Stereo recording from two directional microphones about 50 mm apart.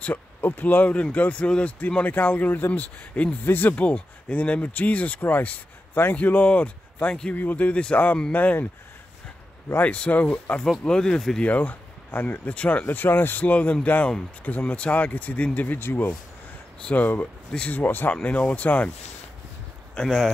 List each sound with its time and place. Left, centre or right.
0.0 s a sound: left
0.5 s speech: left
3.4 s speech: left
3.8 s speech: left
9.8 s speech: left
10.8 s speech: centre
11.4 s speech: left
12.4 s speech: left
13.4 s speech: left
15.8 s speech: left
16.9 s speech: left
18.1 s speech: left
20.0 s speech: centre